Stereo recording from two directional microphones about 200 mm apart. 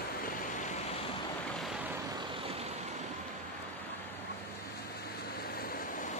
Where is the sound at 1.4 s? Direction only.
Centre (ahead or behind); by 3.0 s 30° right (ahead or behind).